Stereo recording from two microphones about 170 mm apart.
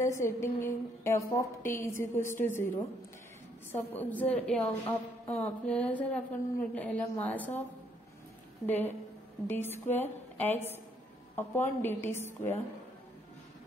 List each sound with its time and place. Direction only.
0.0 s a woman's voice: 15° left (ahead or behind)
3.9 s a woman's voice: 10° left (ahead or behind)
8.6 s a woman's voice: 10° left (ahead or behind)